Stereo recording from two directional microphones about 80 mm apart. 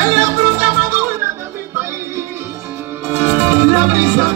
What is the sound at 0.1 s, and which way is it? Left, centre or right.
Music, right.